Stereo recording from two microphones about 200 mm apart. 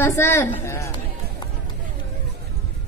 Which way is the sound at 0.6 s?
15° left (ahead or behind).